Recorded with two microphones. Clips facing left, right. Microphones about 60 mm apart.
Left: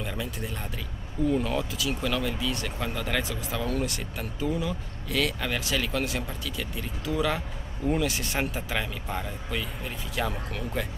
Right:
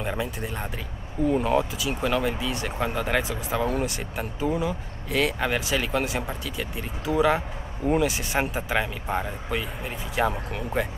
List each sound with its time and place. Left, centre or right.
0.0 s speech: right